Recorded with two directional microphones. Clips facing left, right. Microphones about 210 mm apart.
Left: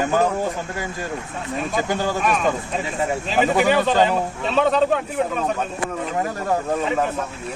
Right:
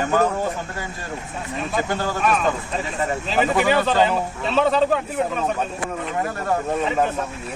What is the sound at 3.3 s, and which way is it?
Speech, centre (ahead or behind).